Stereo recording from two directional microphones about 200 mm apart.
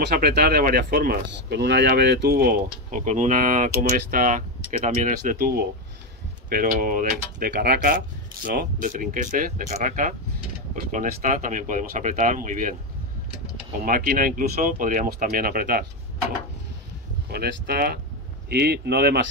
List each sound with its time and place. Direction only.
0.0 s speech: 55° right (ahead or behind)
3.1 s speech: 40° right (ahead or behind)
6.5 s speech: 45° right (ahead or behind)
13.8 s speech: 45° right (ahead or behind)
17.3 s speech: 50° right (ahead or behind)